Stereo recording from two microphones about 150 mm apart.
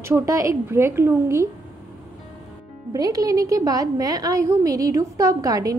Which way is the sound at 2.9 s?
25° right (ahead or behind).